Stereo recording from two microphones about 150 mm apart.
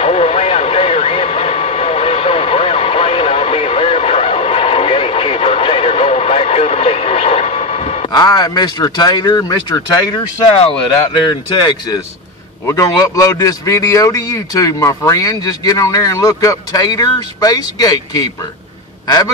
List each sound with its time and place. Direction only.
0.0 s radio: 45° left (ahead or behind)
8.1 s a man's voice: 25° left (ahead or behind)
12.6 s a man's voice: 20° left (ahead or behind)